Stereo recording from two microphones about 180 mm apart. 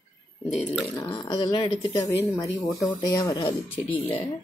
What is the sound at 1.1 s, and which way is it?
Speech, 25° left (ahead or behind).